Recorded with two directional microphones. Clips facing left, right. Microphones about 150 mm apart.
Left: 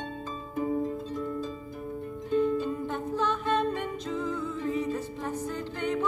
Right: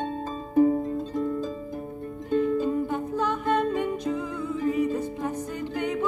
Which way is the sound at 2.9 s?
10° right (ahead or behind).